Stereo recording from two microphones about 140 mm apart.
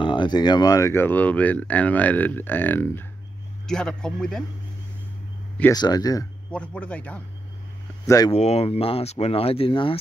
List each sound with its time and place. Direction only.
0.0 s speech: 35° left (ahead or behind); by 3.1 s 15° left (ahead or behind)
3.6 s speech: 5° left (ahead or behind)
5.7 s speech: 30° left (ahead or behind)
6.5 s speech: 10° left (ahead or behind)
8.3 s speech: 50° left (ahead or behind)